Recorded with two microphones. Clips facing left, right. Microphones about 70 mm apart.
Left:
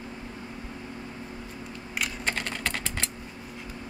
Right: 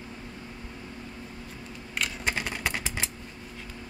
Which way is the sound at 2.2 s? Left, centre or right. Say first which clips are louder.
Right 2 dB; centre.